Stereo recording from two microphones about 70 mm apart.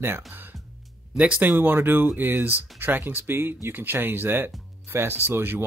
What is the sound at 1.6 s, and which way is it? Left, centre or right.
Speech, right.